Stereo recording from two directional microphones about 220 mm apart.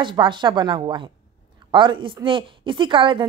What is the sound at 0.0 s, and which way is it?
A woman's voice, 20° right (ahead or behind).